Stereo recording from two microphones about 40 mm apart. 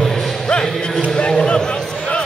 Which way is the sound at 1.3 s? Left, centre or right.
Centre.